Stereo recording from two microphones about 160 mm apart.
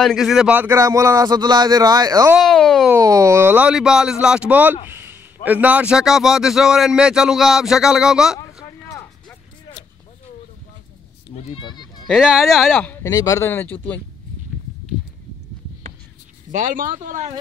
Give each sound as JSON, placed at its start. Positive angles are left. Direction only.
{"t": 0.0, "sound": "speech", "side_deg": 0}
{"t": 2.3, "sound": "a man's voice", "side_deg": 0}
{"t": 2.9, "sound": "a man's voice", "side_deg": -20}
{"t": 11.3, "sound": "speech", "side_deg": 30}
{"t": 12.1, "sound": "a man's voice", "side_deg": -5}
{"t": 13.0, "sound": "speech", "side_deg": 20}
{"t": 16.5, "sound": "speech", "side_deg": -55}